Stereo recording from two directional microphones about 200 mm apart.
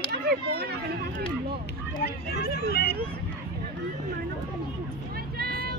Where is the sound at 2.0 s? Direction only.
55° left (ahead or behind).